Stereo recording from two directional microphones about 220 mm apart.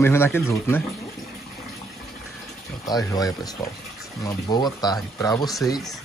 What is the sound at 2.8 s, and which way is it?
Speech, 15° left (ahead or behind).